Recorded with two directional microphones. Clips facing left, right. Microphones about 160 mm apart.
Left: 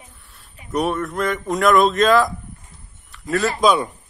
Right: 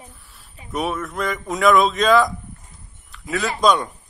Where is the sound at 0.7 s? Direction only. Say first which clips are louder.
Left 3 dB; centre (ahead or behind).